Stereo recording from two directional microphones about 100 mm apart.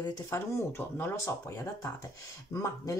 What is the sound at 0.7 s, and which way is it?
Speech, 25° left (ahead or behind).